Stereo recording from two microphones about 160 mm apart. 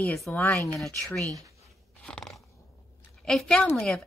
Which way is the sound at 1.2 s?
20° right (ahead or behind).